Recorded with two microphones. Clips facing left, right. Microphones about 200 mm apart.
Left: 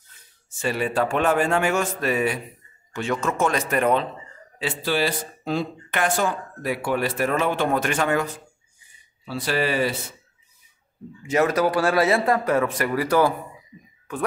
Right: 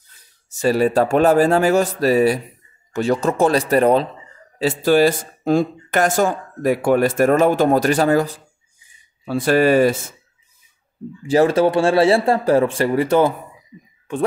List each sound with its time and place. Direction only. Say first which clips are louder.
0.5 s a man's voice: right 9 dB; 40° right (ahead or behind)
9.2 s speech: right 9 dB; 50° right (ahead or behind)
11.2 s speech: right 6 dB; 30° right (ahead or behind)